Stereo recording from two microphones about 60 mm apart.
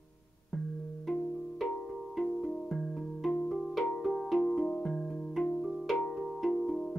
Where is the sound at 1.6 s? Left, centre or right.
Centre.